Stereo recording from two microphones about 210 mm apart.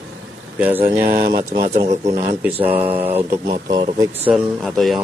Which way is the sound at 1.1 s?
40° right (ahead or behind).